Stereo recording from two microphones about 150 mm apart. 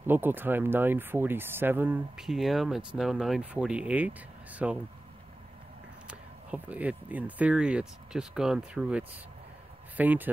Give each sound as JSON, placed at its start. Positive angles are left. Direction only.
{"t": 0.0, "sound": "speech", "side_deg": -15}
{"t": 2.2, "sound": "speech", "side_deg": 0}
{"t": 6.0, "sound": "speech", "side_deg": -10}